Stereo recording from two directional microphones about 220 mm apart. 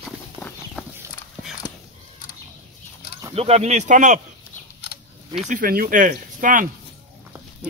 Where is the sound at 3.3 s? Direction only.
30° right (ahead or behind).